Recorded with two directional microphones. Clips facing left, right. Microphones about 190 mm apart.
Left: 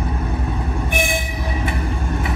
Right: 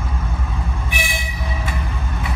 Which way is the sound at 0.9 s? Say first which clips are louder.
Left 6 dB; 50° left (ahead or behind).